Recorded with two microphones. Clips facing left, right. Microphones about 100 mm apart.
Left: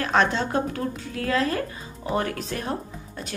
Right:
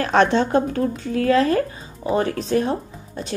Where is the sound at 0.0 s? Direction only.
35° right (ahead or behind).